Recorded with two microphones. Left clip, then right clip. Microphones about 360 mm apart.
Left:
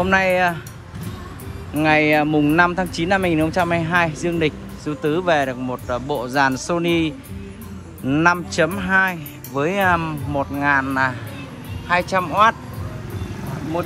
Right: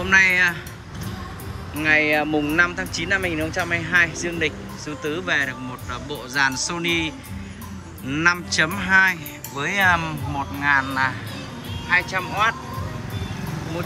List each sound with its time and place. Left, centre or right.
0.0 s speech: centre
1.8 s speech: centre
2.2 s speech: left
2.5 s speech: centre